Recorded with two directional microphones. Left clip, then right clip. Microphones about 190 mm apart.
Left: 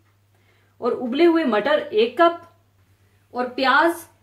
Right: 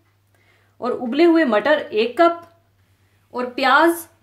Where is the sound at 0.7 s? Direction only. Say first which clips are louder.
Right 1 dB; 45° right (ahead or behind).